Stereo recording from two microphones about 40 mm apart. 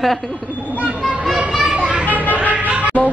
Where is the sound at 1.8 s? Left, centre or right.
Right.